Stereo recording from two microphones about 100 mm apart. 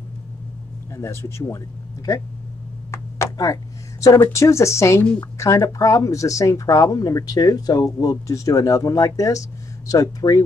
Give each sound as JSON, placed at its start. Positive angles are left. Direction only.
{"t": 0.9, "sound": "speech", "side_deg": 30}
{"t": 2.9, "sound": "a sound", "side_deg": 30}
{"t": 4.2, "sound": "speech", "side_deg": 30}